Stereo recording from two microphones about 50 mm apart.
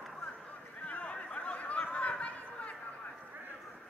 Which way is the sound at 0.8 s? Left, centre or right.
Left.